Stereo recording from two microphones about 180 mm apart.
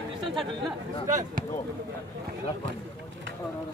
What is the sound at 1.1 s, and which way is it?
Speech, 45° right (ahead or behind).